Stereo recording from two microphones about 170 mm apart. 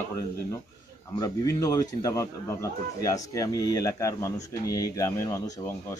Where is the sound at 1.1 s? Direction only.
20° left (ahead or behind).